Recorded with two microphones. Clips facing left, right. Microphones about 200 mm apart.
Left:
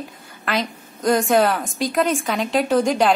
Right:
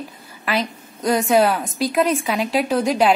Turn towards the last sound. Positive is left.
turn(degrees=-5)  # may be behind; listen again after turning